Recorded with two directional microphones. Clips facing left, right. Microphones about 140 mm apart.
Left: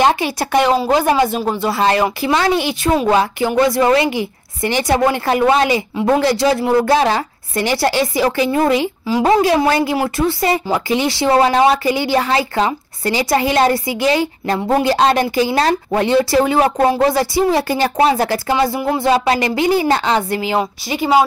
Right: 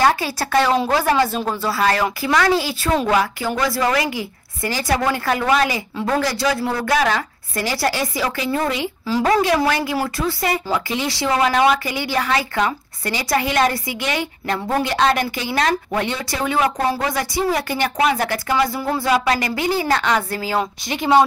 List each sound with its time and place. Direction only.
0.0 s speech: 20° left (ahead or behind)
20.9 s a woman's voice: 5° left (ahead or behind)